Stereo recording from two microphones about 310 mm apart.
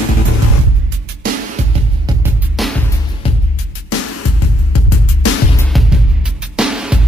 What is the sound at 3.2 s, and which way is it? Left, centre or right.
Music, centre.